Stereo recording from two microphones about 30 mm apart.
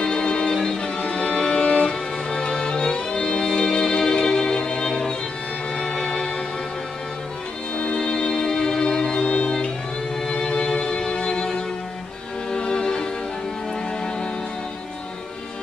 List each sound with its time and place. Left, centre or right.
0.0 s music: left
7.7 s music: left